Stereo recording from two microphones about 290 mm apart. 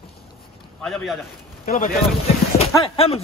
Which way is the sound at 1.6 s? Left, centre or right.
Left.